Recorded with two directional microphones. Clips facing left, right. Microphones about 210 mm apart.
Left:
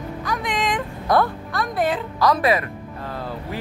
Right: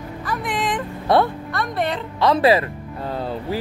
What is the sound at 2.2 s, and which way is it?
Speech, 30° right (ahead or behind).